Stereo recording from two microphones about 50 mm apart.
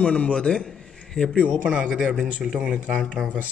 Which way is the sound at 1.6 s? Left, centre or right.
Right.